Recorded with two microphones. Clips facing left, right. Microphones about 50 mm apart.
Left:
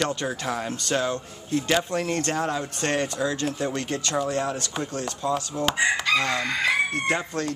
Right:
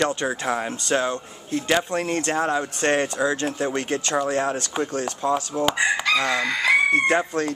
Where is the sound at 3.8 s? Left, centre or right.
Right.